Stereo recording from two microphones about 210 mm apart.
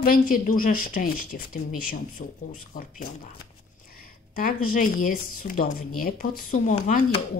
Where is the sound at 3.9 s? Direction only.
45° left (ahead or behind).